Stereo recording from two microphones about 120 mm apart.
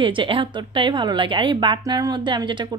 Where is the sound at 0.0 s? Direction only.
45° right (ahead or behind).